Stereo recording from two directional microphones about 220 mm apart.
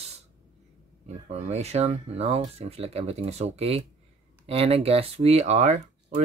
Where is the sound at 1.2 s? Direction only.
30° right (ahead or behind).